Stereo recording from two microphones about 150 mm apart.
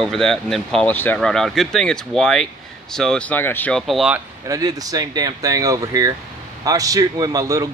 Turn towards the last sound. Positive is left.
turn(degrees=-25)  # may be behind; listen again after turning